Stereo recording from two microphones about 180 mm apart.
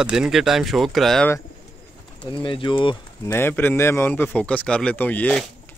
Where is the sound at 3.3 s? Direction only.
10° left (ahead or behind).